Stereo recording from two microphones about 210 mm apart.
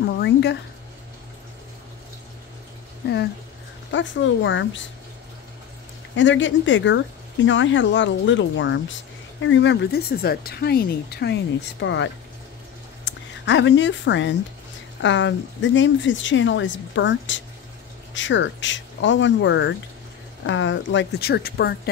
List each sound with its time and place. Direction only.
0.0 s a sound: 55° left (ahead or behind)
3.9 s speech: 60° left (ahead or behind)
6.1 s speech: 60° left (ahead or behind)